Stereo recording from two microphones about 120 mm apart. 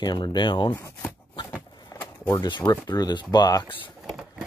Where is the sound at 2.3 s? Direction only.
35° left (ahead or behind).